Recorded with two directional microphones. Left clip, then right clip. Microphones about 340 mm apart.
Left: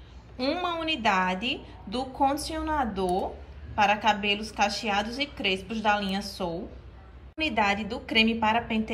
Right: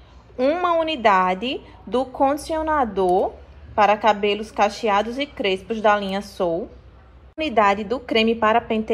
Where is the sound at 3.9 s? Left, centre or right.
Centre.